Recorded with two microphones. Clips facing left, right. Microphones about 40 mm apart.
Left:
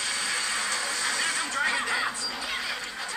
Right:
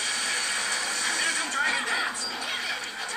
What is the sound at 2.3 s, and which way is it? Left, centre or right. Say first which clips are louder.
Music: right 1 dB; centre.